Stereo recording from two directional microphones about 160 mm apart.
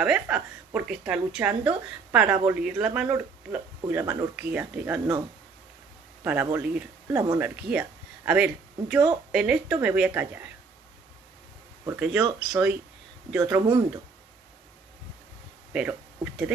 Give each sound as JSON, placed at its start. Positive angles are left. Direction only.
{"t": 0.0, "sound": "speech", "side_deg": -5}
{"t": 4.0, "sound": "speech", "side_deg": -25}
{"t": 4.4, "sound": "speech", "side_deg": -10}
{"t": 6.4, "sound": "speech", "side_deg": -10}
{"t": 11.8, "sound": "speech", "side_deg": -10}
{"t": 15.7, "sound": "speech", "side_deg": -5}